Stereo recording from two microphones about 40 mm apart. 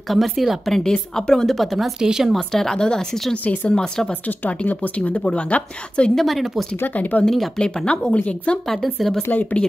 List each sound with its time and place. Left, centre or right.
0.1 s speech: centre
0.7 s speech: centre
2.0 s speech: centre
2.3 s speech: centre
4.1 s a woman's voice: left
6.1 s speech: centre
7.0 s a woman's voice: left
7.5 s speech: left
8.6 s speech: centre
9.3 s a woman's voice: left